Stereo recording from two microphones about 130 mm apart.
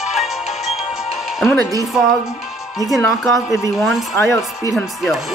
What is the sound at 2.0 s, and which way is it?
Speech, 5° right (ahead or behind).